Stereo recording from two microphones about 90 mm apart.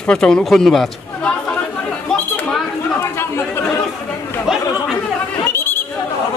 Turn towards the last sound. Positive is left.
turn(degrees=25)  # may be behind; listen again after turning